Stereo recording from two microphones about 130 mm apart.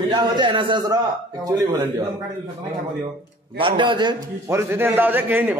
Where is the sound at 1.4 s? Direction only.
30° right (ahead or behind).